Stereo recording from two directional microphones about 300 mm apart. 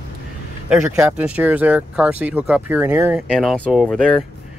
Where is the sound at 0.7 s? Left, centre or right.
Centre.